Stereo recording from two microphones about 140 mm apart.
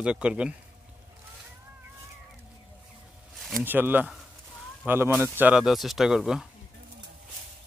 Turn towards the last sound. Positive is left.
turn(degrees=-5)  # may be behind; listen again after turning